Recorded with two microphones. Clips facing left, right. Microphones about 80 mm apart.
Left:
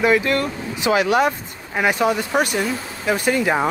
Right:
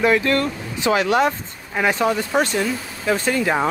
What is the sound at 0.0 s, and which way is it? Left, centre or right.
Speech, centre.